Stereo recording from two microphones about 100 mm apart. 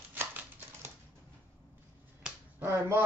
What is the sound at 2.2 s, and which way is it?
Finger snapping, 20° right (ahead or behind).